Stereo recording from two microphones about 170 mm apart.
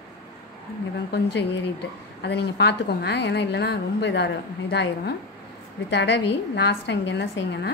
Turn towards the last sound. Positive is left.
turn(degrees=80)